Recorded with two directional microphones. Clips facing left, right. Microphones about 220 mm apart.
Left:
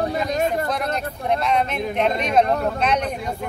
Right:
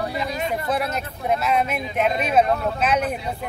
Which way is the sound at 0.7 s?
5° right (ahead or behind).